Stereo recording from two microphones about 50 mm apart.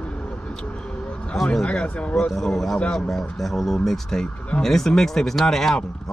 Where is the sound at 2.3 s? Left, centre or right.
Centre.